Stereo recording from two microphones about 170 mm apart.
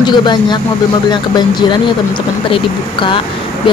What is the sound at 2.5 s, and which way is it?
Speech, 30° left (ahead or behind).